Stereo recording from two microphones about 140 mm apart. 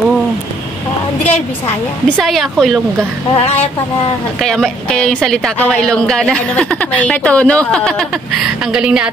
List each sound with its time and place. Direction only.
2.2 s a woman's voice: centre (ahead or behind)
3.3 s speech: 50° left (ahead or behind)
4.4 s a woman's voice: 5° left (ahead or behind)
8.7 s a woman's voice: 5° right (ahead or behind)